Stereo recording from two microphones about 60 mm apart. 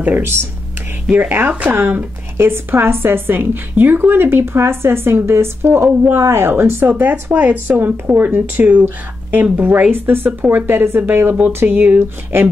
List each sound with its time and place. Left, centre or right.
0.0 s speech: right